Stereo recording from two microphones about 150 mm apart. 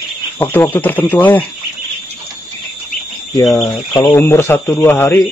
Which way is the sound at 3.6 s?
25° left (ahead or behind).